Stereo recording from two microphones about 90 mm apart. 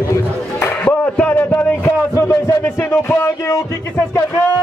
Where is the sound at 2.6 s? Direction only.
25° left (ahead or behind).